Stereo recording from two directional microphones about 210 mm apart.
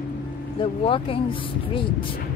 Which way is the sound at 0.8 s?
25° left (ahead or behind).